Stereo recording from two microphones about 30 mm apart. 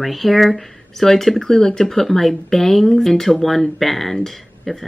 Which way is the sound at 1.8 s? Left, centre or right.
Centre.